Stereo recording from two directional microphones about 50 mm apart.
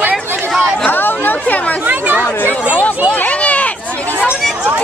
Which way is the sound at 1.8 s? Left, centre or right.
Right.